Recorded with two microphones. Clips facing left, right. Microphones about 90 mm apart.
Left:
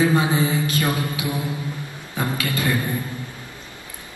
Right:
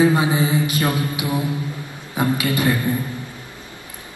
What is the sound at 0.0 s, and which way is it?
A man's voice, 20° right (ahead or behind).